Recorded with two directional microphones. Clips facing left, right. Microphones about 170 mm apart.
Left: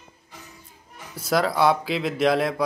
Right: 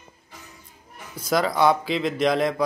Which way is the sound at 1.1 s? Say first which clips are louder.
Even; centre (ahead or behind).